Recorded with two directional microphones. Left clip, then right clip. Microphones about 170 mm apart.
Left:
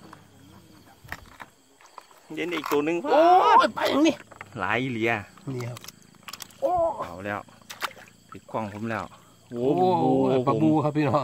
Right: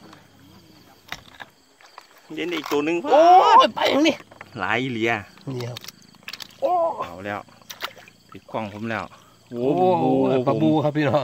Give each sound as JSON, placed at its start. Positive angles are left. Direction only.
{"t": 2.3, "sound": "speech", "side_deg": -10}
{"t": 3.5, "sound": "speech", "side_deg": -35}
{"t": 4.6, "sound": "speech", "side_deg": -15}
{"t": 5.4, "sound": "speech", "side_deg": -30}
{"t": 6.6, "sound": "mechanisms", "side_deg": -30}
{"t": 7.1, "sound": "speech", "side_deg": -5}
{"t": 7.6, "sound": "a sound", "side_deg": 20}
{"t": 8.3, "sound": "pour", "side_deg": -5}
{"t": 8.8, "sound": "speech", "side_deg": -10}
{"t": 10.8, "sound": "speech", "side_deg": -35}